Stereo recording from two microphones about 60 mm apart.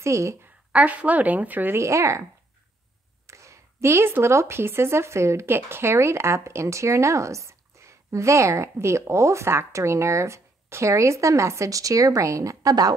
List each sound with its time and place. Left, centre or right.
0.0 s a woman's voice: right
0.7 s a woman's voice: right
1.8 s speech: right
3.3 s speech: right